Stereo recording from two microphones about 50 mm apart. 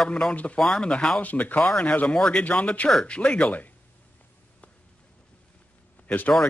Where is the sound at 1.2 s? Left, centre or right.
Left.